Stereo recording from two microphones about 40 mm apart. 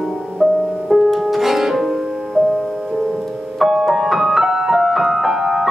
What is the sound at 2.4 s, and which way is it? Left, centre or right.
Music, centre.